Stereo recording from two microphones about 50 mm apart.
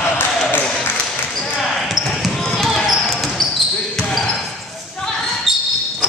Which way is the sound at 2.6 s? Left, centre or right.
Centre.